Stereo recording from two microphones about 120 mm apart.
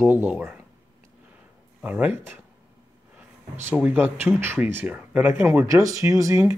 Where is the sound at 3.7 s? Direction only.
15° right (ahead or behind).